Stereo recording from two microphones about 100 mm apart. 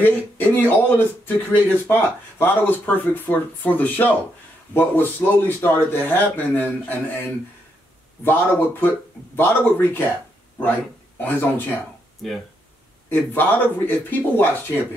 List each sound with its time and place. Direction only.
0.0 s speech: 20° left (ahead or behind)
11.1 s speech: 20° left (ahead or behind)
13.1 s speech: 20° left (ahead or behind)